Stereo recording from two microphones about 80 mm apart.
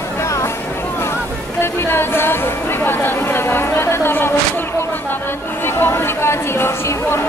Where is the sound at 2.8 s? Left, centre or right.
Left.